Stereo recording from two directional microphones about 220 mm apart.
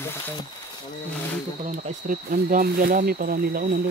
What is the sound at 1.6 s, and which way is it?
Speech, 40° right (ahead or behind).